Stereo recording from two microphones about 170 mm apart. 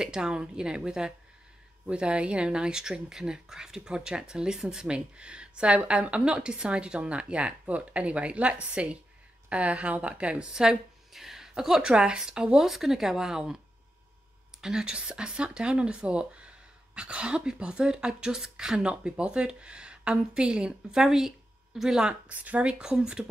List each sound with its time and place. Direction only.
0.0 s a woman's voice: 5° right (ahead or behind)
14.6 s speech: 5° right (ahead or behind)